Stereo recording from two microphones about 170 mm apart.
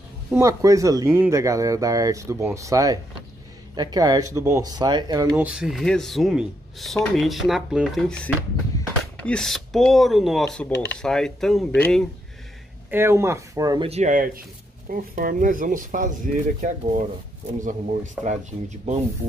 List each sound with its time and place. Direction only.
0.3 s speech: 20° right (ahead or behind)
5.3 s speech: 5° right (ahead or behind)
12.9 s speech: 15° right (ahead or behind)
13.8 s speech: 45° right (ahead or behind)